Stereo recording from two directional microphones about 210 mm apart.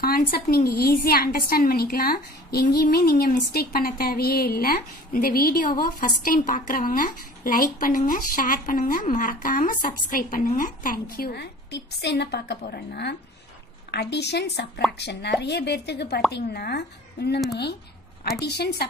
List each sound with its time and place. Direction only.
0.0 s speech: 45° left (ahead or behind)